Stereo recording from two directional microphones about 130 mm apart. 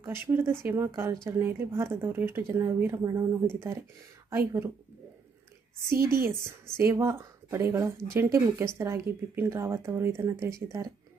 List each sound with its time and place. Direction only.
0.0 s speech: 20° right (ahead or behind)
5.9 s speech: 20° right (ahead or behind)